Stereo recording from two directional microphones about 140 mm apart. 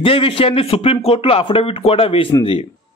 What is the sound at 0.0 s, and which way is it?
Speech, 40° left (ahead or behind).